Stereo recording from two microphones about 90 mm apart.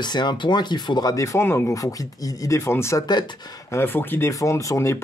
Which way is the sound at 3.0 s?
50° left (ahead or behind).